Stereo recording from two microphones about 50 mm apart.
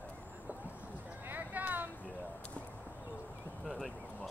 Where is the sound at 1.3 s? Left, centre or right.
Right.